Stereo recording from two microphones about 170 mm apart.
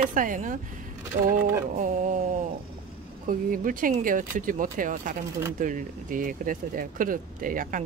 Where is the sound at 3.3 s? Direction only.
55° right (ahead or behind).